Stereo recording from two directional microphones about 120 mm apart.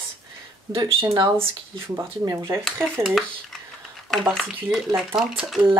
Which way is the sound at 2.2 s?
30° right (ahead or behind).